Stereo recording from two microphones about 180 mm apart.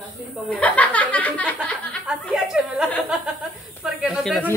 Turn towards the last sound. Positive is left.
turn(degrees=0)  # may be behind; listen again after turning